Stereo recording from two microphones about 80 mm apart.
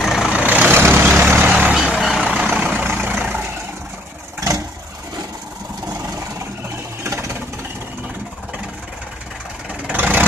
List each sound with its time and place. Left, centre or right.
0.0 s vehicle: centre
0.4 s vehicle: centre
1.7 s vehicle: centre
2.0 s vehicle: centre
2.5 s vehicle: centre
4.4 s vehicle: right
7.0 s vehicle: right
9.9 s vehicle: right